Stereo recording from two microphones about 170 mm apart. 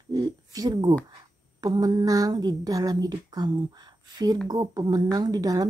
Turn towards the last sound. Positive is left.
turn(degrees=-20)  # may be behind; listen again after turning